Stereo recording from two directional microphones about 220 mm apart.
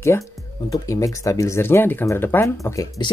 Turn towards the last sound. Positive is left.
turn(degrees=15)  # may be behind; listen again after turning